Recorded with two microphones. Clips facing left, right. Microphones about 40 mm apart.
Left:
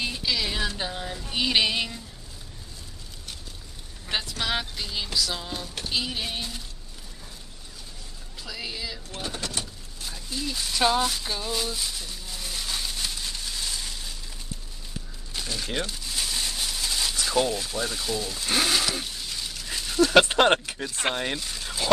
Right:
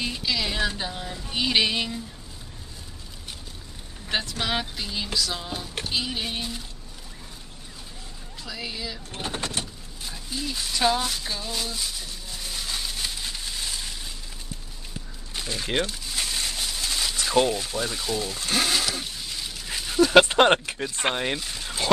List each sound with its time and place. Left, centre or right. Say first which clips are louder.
0.0 s music: even; centre
0.7 s speech: even; centre
4.4 s speech: right 1 dB; centre
8.5 s speech: right 1 dB; centre
9.1 s speech: right 3 dB; right
10.0 s a sound: even; centre
15.5 s speech: right 4 dB; right
16.3 s a sound: even; centre
17.1 s a sound: right 4 dB; centre
17.6 s speech: right 1 dB; centre
18.4 s a sound: left 1 dB; centre
20.3 s speech: right 2 dB; centre